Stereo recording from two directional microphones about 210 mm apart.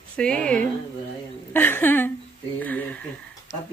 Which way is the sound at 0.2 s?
5° left (ahead or behind).